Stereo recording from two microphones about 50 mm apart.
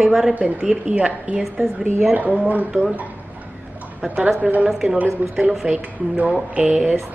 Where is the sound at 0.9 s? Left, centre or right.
Right.